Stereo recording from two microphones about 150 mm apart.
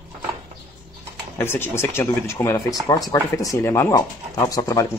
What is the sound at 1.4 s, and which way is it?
Speech, 15° left (ahead or behind).